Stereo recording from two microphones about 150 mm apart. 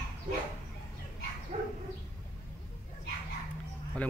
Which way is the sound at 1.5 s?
55° right (ahead or behind).